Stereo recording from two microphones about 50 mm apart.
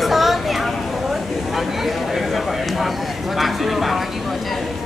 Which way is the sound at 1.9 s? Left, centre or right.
Centre.